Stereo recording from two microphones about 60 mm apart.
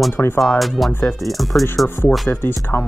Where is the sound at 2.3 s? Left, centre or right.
Left.